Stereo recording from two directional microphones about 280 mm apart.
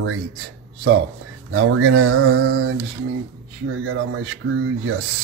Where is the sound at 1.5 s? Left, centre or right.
Right.